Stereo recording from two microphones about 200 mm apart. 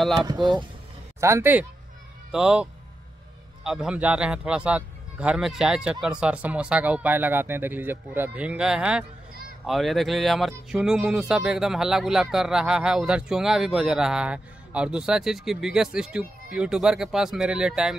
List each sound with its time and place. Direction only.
0.0 s speech: centre (ahead or behind)
0.3 s speech: 20° right (ahead or behind); by 17.9 s 5° right (ahead or behind)